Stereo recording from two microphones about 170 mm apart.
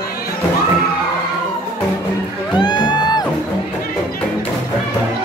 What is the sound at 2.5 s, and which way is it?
Music, 25° left (ahead or behind).